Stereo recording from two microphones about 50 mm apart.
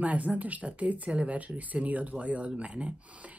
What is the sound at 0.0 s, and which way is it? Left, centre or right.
Speech, right.